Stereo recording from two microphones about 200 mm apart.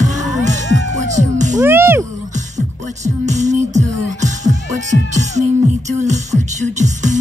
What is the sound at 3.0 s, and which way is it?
Music, 35° right (ahead or behind).